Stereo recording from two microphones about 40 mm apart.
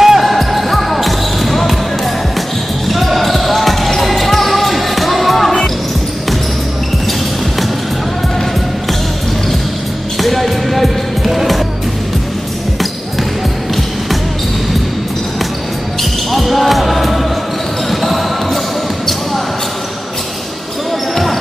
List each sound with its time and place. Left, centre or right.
0.0 s basketball bounce: centre
2.9 s basketball bounce: centre
10.1 s music: centre
16.0 s basketball bounce: centre